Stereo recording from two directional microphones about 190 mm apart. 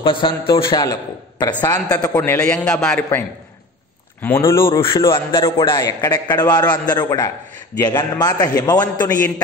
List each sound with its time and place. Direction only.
0.0 s a man's voice: 25° left (ahead or behind)
1.5 s a man's voice: 10° left (ahead or behind)
2.4 s a man's voice: 5° left (ahead or behind)
4.5 s a man's voice: 15° left (ahead or behind)
4.7 s a man's voice: 25° left (ahead or behind)